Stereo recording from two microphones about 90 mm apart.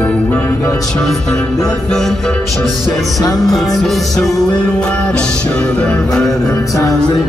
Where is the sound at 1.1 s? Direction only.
5° left (ahead or behind).